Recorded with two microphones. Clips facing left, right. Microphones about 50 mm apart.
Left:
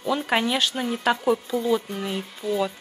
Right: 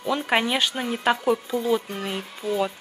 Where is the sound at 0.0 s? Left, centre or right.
Centre.